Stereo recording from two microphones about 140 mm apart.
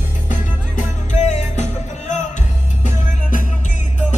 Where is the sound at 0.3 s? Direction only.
65° left (ahead or behind).